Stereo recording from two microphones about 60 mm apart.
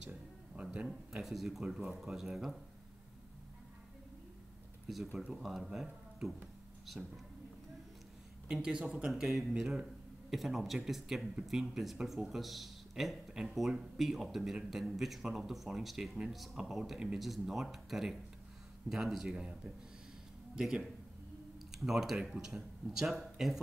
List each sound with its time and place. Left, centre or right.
0.1 s a sound: right
1.1 s speech: centre
4.8 s speech: centre
8.5 s speech: centre
9.1 s speech: centre
19.3 s speech: centre
20.5 s speech: centre